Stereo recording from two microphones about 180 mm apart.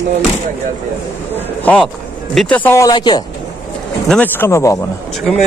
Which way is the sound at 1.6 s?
10° left (ahead or behind).